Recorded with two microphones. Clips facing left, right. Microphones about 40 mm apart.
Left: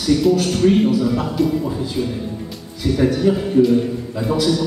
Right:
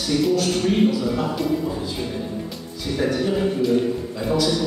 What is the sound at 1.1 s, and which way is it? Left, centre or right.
Speech, centre.